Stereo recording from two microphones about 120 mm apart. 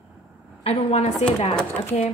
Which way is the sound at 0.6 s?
60° left (ahead or behind).